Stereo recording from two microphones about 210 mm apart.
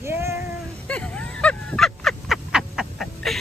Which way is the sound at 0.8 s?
5° left (ahead or behind).